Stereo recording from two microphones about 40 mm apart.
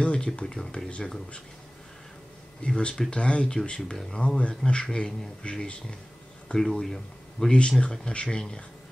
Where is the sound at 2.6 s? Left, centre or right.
Left.